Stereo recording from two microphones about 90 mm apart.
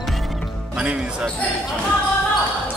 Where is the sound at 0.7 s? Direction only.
10° right (ahead or behind).